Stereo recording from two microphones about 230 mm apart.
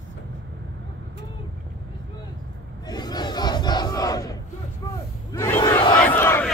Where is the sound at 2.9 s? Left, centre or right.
Centre.